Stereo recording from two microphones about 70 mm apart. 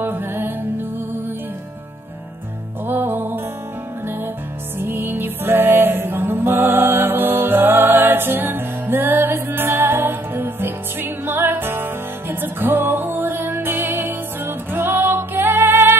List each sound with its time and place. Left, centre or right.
0.0 s music: right
2.9 s music: right
4.7 s music: right